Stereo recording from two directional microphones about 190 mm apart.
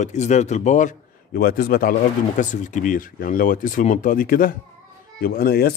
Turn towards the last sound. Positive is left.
turn(degrees=55)  # may be behind; listen again after turning